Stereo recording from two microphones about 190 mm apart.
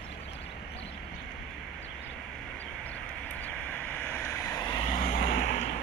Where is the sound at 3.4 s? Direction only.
10° left (ahead or behind); by 5.1 s 30° left (ahead or behind).